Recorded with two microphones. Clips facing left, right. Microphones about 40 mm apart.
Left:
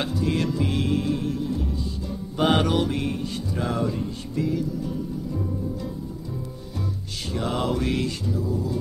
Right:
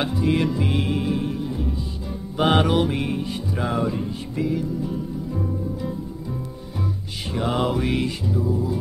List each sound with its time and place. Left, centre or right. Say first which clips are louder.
0.0 s music: right 3 dB; centre
7.3 s music: right 3 dB; centre